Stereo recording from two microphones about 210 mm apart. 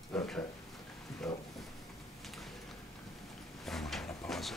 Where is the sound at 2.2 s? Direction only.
Centre (ahead or behind).